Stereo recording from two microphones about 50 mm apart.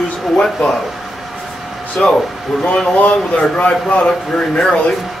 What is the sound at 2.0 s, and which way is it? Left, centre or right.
Speech, centre.